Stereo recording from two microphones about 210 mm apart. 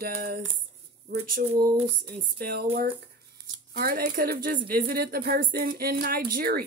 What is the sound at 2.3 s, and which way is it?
Speech, 50° right (ahead or behind).